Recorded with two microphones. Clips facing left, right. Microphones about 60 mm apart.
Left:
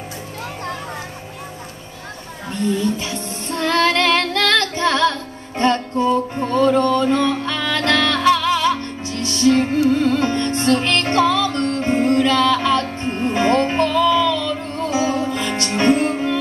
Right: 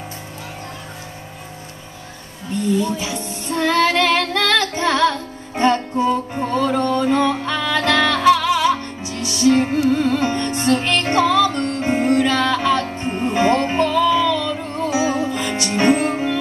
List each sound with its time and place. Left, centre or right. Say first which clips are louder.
2.8 s music: even; centre